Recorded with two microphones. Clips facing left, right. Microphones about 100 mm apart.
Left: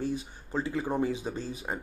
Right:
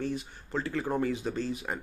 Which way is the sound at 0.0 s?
15° left (ahead or behind).